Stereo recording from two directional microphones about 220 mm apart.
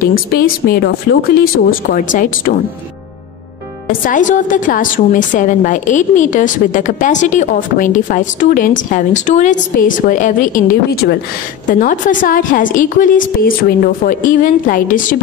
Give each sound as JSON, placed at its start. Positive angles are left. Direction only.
{"t": 0.0, "sound": "a woman's voice", "side_deg": 40}
{"t": 4.0, "sound": "a woman's voice", "side_deg": 35}